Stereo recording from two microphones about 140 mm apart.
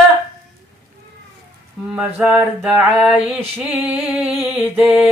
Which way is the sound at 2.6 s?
5° right (ahead or behind).